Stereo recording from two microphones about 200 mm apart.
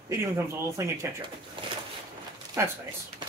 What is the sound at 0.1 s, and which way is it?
Speech, 15° right (ahead or behind).